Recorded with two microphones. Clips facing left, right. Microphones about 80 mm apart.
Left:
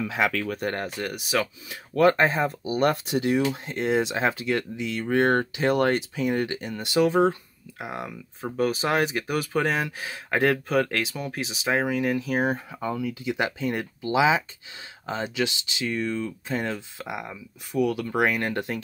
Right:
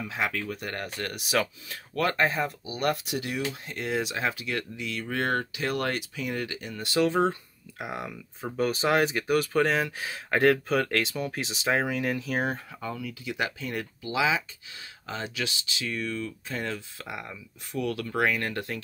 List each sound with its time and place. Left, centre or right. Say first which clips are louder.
0.1 s speech: left 3 dB; left
0.6 s speech: left 6 dB; left
0.8 s speech: left 3 dB; centre
1.1 s speech: even; centre
2.0 s speech: left 6 dB; left; by 7.3 s centre
7.8 s speech: left 1 dB; centre
12.8 s speech: left 7 dB; left